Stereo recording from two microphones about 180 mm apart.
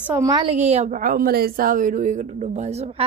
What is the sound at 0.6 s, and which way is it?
A woman's voice, 40° right (ahead or behind).